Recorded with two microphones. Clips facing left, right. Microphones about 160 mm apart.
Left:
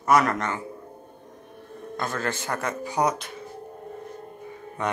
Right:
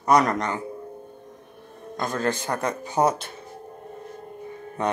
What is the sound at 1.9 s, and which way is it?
Speech, 15° right (ahead or behind).